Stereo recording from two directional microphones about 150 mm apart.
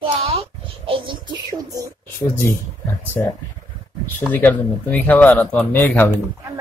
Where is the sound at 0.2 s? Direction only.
40° right (ahead or behind).